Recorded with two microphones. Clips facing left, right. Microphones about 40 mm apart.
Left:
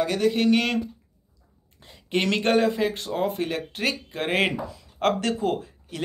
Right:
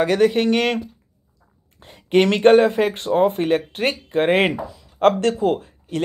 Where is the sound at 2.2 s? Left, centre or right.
Right.